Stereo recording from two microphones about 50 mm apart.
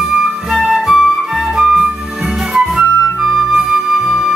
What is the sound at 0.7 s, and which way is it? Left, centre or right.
Flute, centre.